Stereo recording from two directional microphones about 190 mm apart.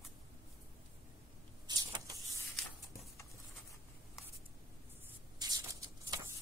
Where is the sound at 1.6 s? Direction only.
20° right (ahead or behind).